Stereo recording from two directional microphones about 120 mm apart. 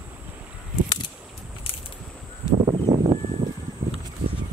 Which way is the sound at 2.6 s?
45° right (ahead or behind).